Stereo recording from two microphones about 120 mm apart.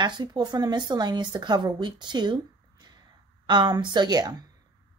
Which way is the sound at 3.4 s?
40° right (ahead or behind).